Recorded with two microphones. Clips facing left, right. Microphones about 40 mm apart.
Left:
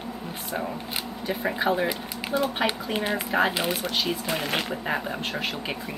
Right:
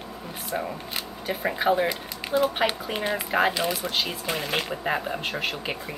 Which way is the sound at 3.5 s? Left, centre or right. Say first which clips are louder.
Even; left.